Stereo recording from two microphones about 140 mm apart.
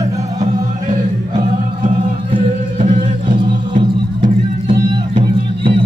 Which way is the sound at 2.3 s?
45° right (ahead or behind).